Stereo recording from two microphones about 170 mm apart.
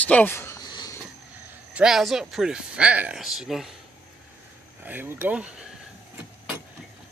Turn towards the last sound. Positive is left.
turn(degrees=-5)  # may be behind; listen again after turning